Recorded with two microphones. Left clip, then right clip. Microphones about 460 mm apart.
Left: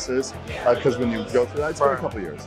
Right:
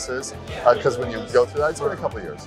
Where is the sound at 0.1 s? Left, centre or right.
Right.